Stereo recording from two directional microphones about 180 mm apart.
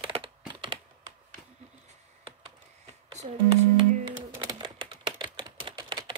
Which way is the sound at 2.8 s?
40° right (ahead or behind).